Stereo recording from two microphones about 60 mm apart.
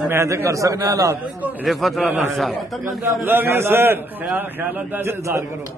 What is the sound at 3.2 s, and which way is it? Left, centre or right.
A man's voice, right.